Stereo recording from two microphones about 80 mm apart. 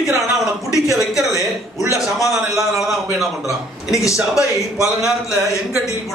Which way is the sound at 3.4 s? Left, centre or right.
Left.